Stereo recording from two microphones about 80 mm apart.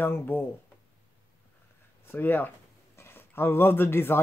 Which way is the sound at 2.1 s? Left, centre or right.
Left.